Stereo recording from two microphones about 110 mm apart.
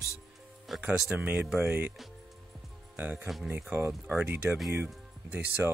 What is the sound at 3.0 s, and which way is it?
Speech, 15° right (ahead or behind).